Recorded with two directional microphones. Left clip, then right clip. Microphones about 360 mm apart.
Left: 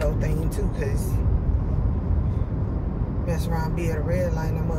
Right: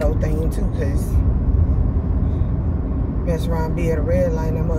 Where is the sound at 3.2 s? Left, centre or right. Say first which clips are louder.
Right 5 dB; centre.